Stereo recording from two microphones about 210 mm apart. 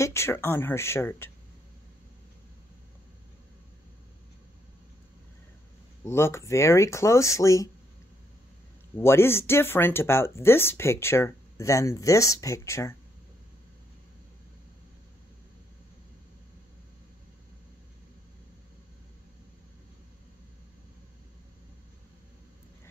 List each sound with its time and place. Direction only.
0.0 s speech: 15° left (ahead or behind)
6.0 s speech: 10° left (ahead or behind)
8.9 s speech: 10° left (ahead or behind)